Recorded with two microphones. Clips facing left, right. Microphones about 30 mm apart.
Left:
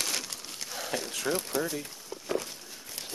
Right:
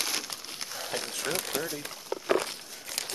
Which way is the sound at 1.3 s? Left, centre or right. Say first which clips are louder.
Left 3 dB; right.